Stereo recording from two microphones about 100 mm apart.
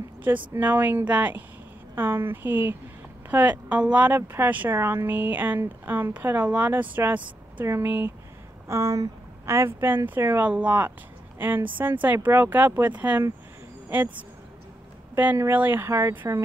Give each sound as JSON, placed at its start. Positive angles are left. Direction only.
{"t": 0.3, "sound": "speech", "side_deg": -20}
{"t": 15.5, "sound": "speech", "side_deg": -20}